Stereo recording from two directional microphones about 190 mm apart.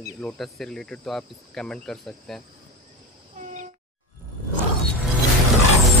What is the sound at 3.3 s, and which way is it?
Train, 40° right (ahead or behind).